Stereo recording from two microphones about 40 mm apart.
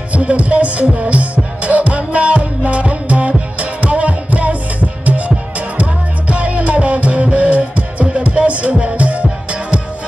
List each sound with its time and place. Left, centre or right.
0.1 s music: right